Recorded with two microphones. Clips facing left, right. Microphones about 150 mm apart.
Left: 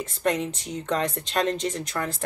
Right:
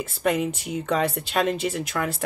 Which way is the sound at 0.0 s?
5° right (ahead or behind).